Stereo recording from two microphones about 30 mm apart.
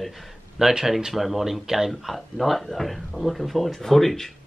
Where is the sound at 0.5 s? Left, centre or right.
Centre.